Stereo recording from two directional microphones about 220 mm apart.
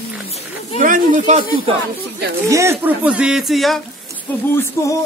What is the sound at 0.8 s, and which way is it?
Speech, 35° right (ahead or behind).